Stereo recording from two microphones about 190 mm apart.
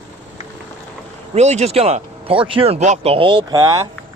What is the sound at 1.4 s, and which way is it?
Speech, 35° right (ahead or behind).